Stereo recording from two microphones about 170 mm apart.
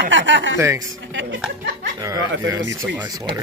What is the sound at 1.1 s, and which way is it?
Speech, 90° right.